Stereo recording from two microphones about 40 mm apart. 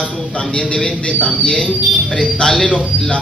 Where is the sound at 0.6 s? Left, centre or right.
Left.